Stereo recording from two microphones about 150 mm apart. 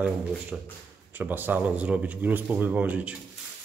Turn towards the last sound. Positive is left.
turn(degrees=-10)  # may be behind; listen again after turning